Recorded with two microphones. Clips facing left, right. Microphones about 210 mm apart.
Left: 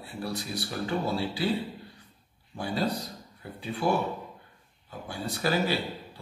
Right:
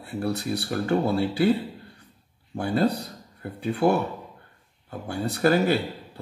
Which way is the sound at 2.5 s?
60° right (ahead or behind).